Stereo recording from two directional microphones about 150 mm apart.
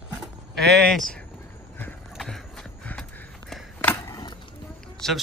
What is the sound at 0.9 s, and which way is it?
Speech, 5° left (ahead or behind).